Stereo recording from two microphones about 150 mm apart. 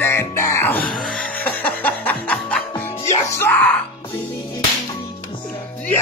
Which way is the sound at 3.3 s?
15° left (ahead or behind).